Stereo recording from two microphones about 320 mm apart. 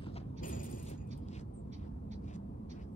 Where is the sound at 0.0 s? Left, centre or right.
Left.